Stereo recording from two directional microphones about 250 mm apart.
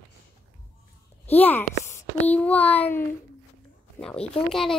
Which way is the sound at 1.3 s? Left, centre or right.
Centre.